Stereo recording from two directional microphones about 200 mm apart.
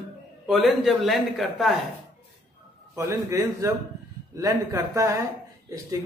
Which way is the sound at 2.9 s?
15° right (ahead or behind).